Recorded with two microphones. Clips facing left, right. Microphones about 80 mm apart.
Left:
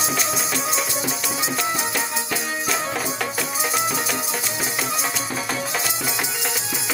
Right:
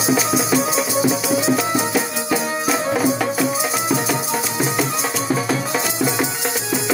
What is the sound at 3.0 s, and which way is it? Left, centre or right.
Music, centre.